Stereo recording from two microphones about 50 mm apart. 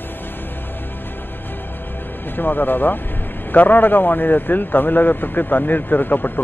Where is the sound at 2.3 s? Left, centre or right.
Left.